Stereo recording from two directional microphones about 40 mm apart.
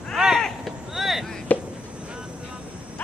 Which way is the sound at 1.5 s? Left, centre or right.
Left.